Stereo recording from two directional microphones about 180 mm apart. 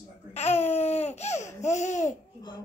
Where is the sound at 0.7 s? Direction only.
35° left (ahead or behind).